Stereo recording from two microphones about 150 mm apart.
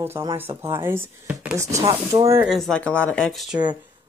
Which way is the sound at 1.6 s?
20° right (ahead or behind).